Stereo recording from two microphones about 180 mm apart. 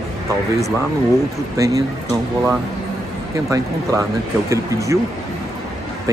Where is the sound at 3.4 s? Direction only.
15° right (ahead or behind).